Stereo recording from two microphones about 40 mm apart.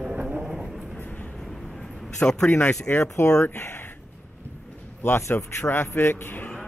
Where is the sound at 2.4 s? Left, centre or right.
Left.